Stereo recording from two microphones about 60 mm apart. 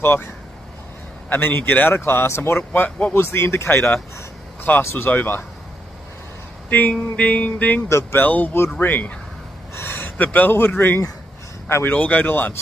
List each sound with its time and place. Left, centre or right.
0.0 s speech: left
1.3 s speech: left
6.7 s a sound: left
9.8 s speech: left